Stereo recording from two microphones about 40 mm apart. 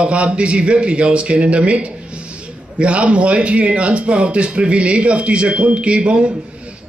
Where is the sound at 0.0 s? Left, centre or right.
Right.